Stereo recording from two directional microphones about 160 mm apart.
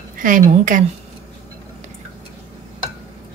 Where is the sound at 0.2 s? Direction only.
55° right (ahead or behind).